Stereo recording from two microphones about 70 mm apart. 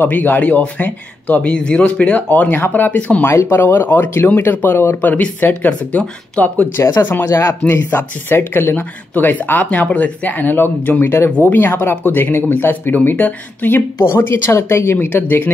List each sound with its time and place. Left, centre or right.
0.0 s speech: left
3.3 s speech: left
6.8 s speech: left
11.3 s speech: left
11.6 s speech: left